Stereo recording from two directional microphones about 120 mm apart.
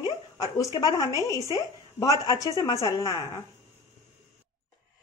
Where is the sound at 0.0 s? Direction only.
30° left (ahead or behind).